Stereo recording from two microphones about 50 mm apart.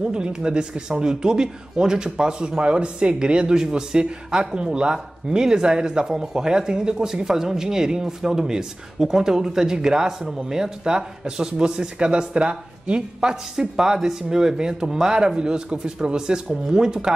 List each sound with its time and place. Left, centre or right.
0.0 s speech: centre